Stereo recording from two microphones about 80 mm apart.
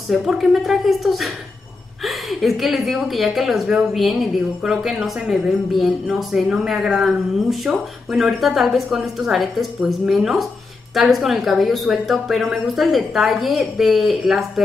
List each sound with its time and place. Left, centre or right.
0.1 s a woman's voice: centre